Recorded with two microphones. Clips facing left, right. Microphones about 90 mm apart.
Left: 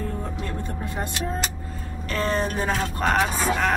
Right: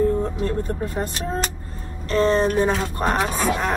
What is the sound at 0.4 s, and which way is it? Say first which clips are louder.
Speech: right 7 dB; 40° right (ahead or behind).